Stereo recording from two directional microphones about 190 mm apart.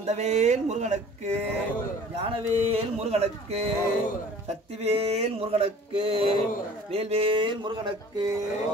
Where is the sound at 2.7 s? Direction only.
35° right (ahead or behind).